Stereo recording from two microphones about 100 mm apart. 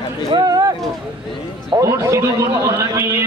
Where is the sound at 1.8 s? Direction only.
30° right (ahead or behind).